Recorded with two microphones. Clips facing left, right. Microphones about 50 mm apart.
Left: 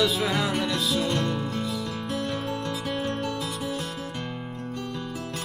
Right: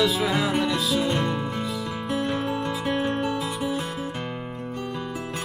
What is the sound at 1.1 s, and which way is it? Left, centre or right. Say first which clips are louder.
Music: right 2 dB; centre.